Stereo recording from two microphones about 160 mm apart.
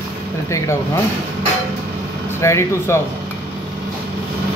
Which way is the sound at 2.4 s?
15° left (ahead or behind).